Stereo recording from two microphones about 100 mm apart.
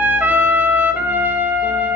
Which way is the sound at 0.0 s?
20° right (ahead or behind).